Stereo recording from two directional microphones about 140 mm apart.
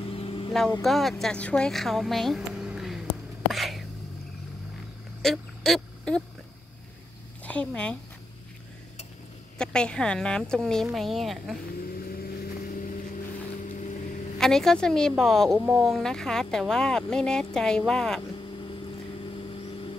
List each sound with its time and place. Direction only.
0.0 s vehicle: 40° left (ahead or behind)
0.8 s a woman's voice: centre (ahead or behind)
3.5 s a sound: centre (ahead or behind)
5.2 s a sound: centre (ahead or behind)
7.4 s speech: 10° left (ahead or behind)
9.6 s speech: 5° left (ahead or behind)
11.9 s vehicle: 90° left
13.7 s boat: 65° left (ahead or behind)
14.4 s speech: 5° left (ahead or behind)
19.3 s vehicle: 40° left (ahead or behind)